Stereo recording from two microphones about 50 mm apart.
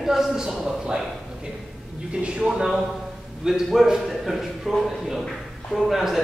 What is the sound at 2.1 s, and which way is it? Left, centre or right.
A man's voice, centre.